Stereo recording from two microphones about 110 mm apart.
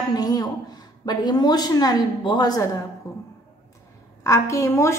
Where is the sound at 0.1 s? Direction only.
35° left (ahead or behind).